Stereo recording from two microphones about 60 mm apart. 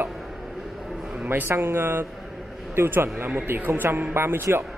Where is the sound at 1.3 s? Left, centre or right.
Right.